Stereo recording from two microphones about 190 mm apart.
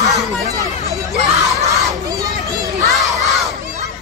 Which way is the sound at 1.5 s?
15° right (ahead or behind).